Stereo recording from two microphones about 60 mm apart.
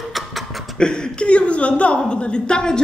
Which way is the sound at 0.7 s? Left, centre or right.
Centre.